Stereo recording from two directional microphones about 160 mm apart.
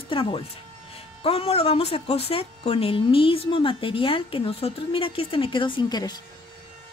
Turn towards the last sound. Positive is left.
turn(degrees=25)  # may be behind; listen again after turning